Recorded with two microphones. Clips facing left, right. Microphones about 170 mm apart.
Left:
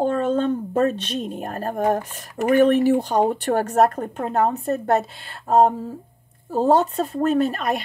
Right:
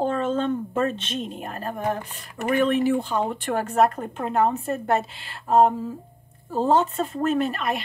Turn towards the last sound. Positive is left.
turn(degrees=40)  # may be behind; listen again after turning